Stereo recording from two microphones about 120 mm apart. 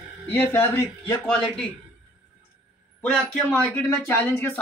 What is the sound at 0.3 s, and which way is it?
Speech, 20° left (ahead or behind).